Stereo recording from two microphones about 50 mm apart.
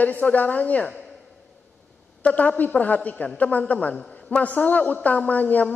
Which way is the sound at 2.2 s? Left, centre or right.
Left.